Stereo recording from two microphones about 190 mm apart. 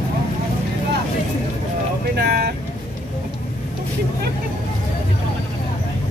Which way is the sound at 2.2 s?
55° right (ahead or behind).